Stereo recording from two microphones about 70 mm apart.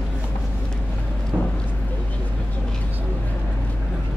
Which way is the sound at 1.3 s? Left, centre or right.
Centre.